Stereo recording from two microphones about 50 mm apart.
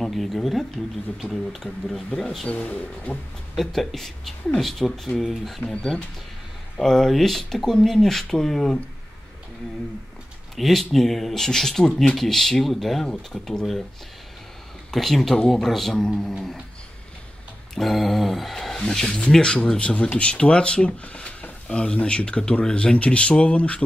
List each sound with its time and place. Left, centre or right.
0.0 s speech: centre
2.4 s speech: left
3.5 s speech: centre
5.7 s speech: centre
10.5 s speech: centre
14.9 s speech: centre
17.7 s speech: centre; by 23.8 s left